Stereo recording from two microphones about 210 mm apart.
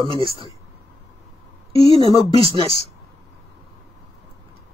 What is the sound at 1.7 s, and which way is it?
Speech, 25° right (ahead or behind).